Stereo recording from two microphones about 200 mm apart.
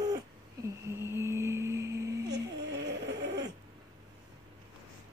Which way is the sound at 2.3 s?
55° right (ahead or behind).